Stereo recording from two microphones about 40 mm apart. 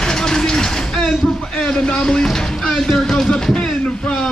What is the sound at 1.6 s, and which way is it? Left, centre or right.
Speech, left.